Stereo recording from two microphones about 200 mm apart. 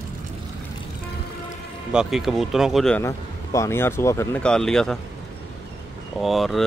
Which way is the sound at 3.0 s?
15° left (ahead or behind).